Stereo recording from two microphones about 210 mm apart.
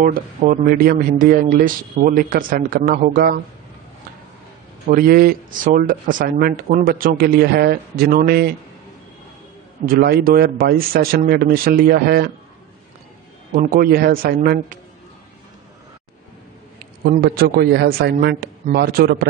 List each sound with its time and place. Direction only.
0.0 s speech: 40° right (ahead or behind)
4.8 s speech: 45° right (ahead or behind)
9.8 s speech: 45° right (ahead or behind)
13.6 s speech: 45° right (ahead or behind)
17.0 s speech: 45° right (ahead or behind)